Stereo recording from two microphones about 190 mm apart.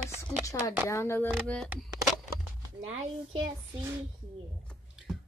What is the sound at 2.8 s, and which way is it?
Speech, 90° right.